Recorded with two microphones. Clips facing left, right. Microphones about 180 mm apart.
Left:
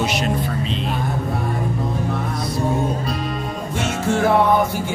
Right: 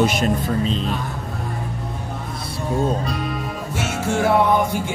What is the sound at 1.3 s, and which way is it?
Music, 80° left.